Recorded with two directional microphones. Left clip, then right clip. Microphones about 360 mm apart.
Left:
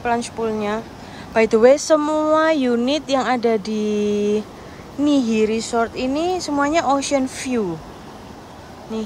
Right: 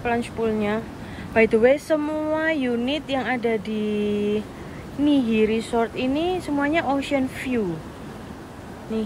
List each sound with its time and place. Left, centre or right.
0.0 s speech: centre
4.1 s a sound: left
5.0 s speech: centre